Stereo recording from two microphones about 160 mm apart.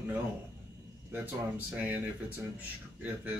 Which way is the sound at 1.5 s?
10° right (ahead or behind).